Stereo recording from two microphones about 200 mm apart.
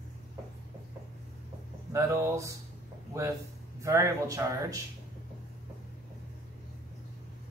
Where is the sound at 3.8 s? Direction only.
15° right (ahead or behind).